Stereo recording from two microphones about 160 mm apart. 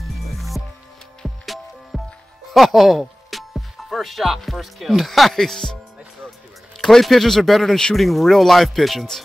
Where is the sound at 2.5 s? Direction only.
Centre (ahead or behind).